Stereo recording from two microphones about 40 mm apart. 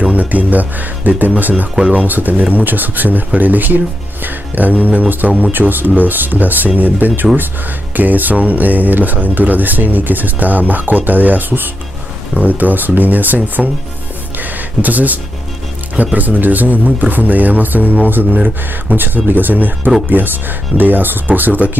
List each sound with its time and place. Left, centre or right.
0.0 s speech: right
1.8 s speech: right
2.0 s speech: right